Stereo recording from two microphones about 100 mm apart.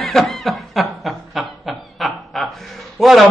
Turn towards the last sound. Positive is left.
turn(degrees=0)  # may be behind; listen again after turning